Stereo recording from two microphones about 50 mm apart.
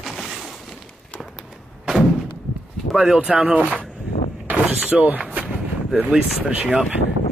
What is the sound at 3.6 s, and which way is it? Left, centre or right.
Speech, right.